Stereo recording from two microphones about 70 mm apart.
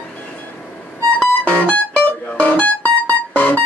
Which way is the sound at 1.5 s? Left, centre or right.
Left.